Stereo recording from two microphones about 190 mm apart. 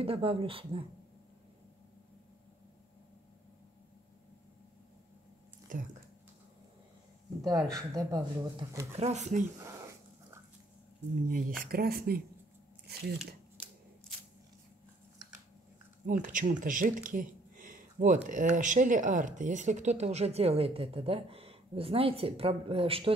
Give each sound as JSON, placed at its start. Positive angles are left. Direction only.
{"t": 0.0, "sound": "speech", "side_deg": -30}
{"t": 5.7, "sound": "speech", "side_deg": -45}
{"t": 7.7, "sound": "speech", "side_deg": -20}
{"t": 8.9, "sound": "speech", "side_deg": -35}
{"t": 9.6, "sound": "a sound", "side_deg": -15}
{"t": 11.2, "sound": "speech", "side_deg": -50}
{"t": 16.1, "sound": "speech", "side_deg": -45}